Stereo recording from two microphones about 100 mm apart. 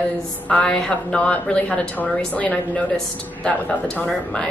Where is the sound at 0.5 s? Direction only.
10° left (ahead or behind).